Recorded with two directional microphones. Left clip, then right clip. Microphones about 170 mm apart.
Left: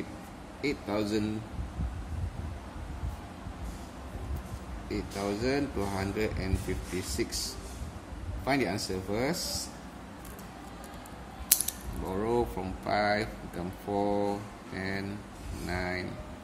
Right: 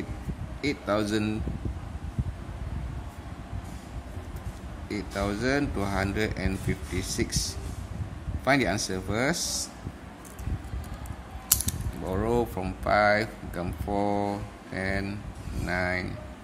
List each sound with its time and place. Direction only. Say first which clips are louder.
0.6 s speech: right 4 dB; 45° right (ahead or behind)
4.8 s speech: right 3 dB; 45° right (ahead or behind)
12.1 s speech: right 3 dB; 40° right (ahead or behind)